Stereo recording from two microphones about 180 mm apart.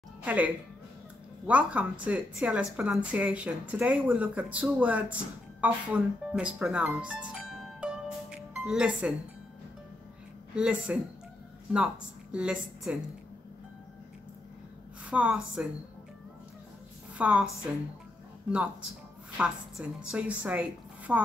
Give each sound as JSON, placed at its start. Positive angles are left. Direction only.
{"t": 0.2, "sound": "speech", "side_deg": -10}
{"t": 1.5, "sound": "speech", "side_deg": -10}
{"t": 7.8, "sound": "music", "side_deg": -5}
{"t": 10.5, "sound": "speech", "side_deg": -5}
{"t": 15.0, "sound": "speech", "side_deg": -5}
{"t": 17.2, "sound": "speech", "side_deg": -5}
{"t": 19.3, "sound": "speech", "side_deg": -5}